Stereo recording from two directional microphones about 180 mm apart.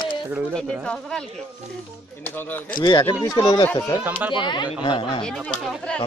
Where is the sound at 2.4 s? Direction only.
10° left (ahead or behind).